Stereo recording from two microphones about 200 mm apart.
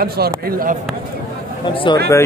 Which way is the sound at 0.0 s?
50° right (ahead or behind).